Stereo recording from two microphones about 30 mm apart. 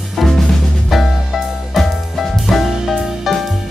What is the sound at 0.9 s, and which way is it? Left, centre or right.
Music, centre.